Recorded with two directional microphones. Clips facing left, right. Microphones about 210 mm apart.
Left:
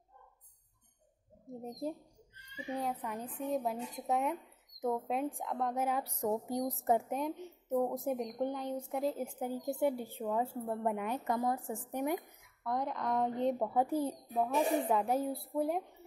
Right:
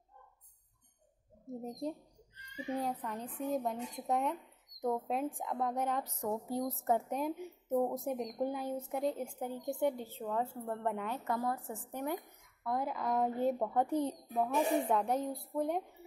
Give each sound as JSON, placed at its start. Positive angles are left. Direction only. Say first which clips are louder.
{"t": 1.6, "sound": "a woman's voice", "louder": "left 1 dB", "side_deg": 5}
{"t": 6.2, "sound": "a woman's voice", "louder": "left 2 dB", "side_deg": 20}
{"t": 7.1, "sound": "a woman's voice", "louder": "even", "side_deg": 0}
{"t": 12.6, "sound": "a woman's voice", "louder": "even", "side_deg": -5}